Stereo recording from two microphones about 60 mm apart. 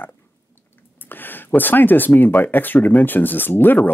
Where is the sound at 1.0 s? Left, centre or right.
Left.